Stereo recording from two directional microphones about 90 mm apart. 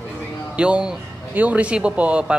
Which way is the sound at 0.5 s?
10° right (ahead or behind).